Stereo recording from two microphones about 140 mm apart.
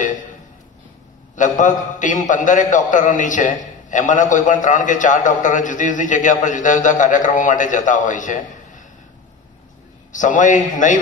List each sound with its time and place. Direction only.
1.3 s a man's voice: 65° left (ahead or behind)
10.1 s a man's voice: 65° left (ahead or behind)